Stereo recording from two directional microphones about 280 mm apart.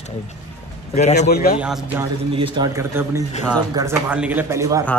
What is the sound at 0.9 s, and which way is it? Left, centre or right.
Speech, left.